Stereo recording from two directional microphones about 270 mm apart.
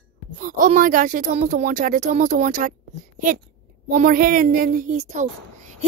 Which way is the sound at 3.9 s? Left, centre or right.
Right.